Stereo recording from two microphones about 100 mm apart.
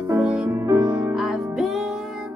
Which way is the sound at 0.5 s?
35° right (ahead or behind).